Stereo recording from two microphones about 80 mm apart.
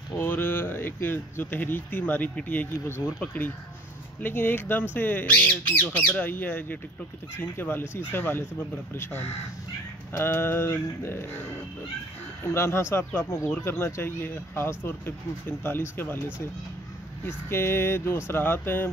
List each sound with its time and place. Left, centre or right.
0.2 s speech: left
4.2 s speech: left
12.5 s speech: left
12.9 s speech: left
17.3 s speech: left